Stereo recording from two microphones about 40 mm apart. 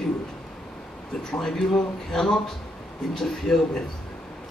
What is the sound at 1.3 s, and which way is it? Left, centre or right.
Speech, centre.